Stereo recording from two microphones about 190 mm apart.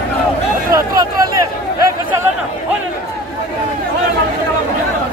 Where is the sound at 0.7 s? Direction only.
20° right (ahead or behind).